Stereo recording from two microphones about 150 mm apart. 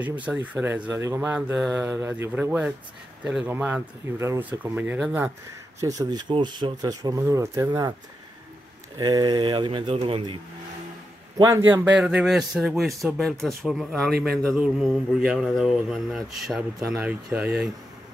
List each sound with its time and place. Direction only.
0.0 s speech: 10° right (ahead or behind)
1.3 s speech: 10° right (ahead or behind)
5.8 s speech: 25° right (ahead or behind)
8.9 s speech: 25° right (ahead or behind)
11.4 s a man's voice: 20° right (ahead or behind)